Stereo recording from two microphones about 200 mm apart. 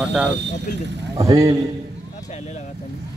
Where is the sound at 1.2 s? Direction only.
15° right (ahead or behind).